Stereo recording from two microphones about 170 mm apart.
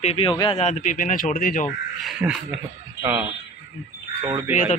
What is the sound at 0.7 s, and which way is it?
Speech, 45° left (ahead or behind).